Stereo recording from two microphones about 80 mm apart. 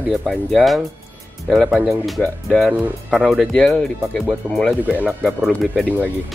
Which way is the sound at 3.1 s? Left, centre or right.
Centre.